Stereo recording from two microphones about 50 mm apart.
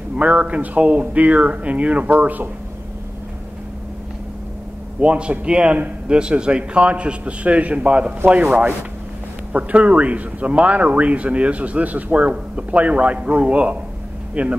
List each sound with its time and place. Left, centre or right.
0.1 s speech: right
5.0 s speech: right
9.5 s speech: right